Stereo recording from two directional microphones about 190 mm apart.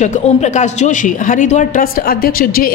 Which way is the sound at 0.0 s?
40° left (ahead or behind).